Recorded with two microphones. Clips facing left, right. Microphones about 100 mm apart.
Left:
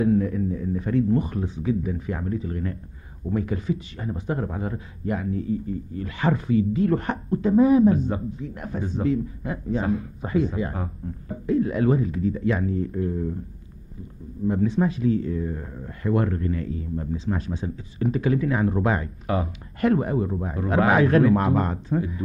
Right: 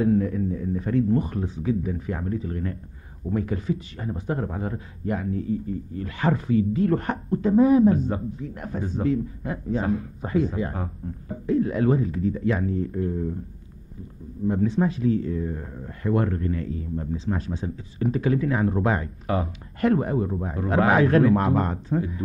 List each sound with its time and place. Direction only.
0.0 s speech: 45° right (ahead or behind)
14.5 s speech: 35° right (ahead or behind)
20.2 s a man's voice: 20° right (ahead or behind)
20.5 s speech: 35° right (ahead or behind)